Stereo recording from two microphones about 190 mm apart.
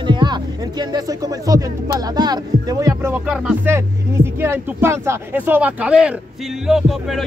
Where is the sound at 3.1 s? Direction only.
5° right (ahead or behind).